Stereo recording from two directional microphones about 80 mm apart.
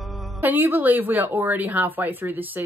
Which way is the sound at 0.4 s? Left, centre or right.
Right.